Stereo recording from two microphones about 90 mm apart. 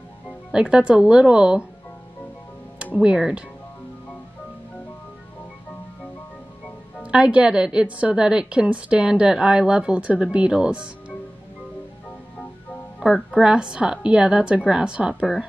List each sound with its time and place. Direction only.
0.5 s a woman's voice: 10° right (ahead or behind)
2.8 s a woman's voice: 10° right (ahead or behind)
7.0 s a woman's voice: 10° right (ahead or behind)
13.0 s a woman's voice: centre (ahead or behind)